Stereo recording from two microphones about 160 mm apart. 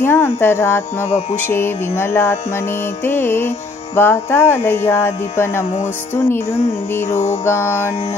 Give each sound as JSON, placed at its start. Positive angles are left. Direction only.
{"t": 0.0, "sound": "music", "side_deg": 15}
{"t": 7.1, "sound": "music", "side_deg": 15}